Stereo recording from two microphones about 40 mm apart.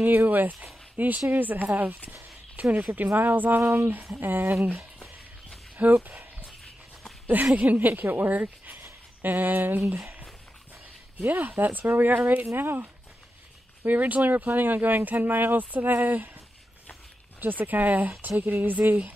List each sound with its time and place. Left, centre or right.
0.0 s speech: right
2.9 s speech: right
5.8 s speech: right
6.6 s walk: centre
7.5 s speech: right
9.8 s speech: right
11.1 s speech: right
13.8 s speech: right
17.4 s speech: right